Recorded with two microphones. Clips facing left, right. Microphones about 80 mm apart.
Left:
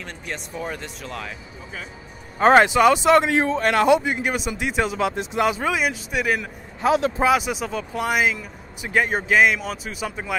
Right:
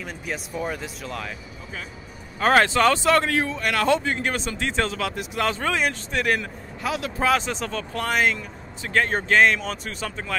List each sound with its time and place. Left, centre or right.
0.0 s speech: centre
2.3 s speech: left
3.4 s a man's voice: left
3.8 s speech: centre
5.5 s speech: centre
6.8 s speech: left
7.2 s speech: centre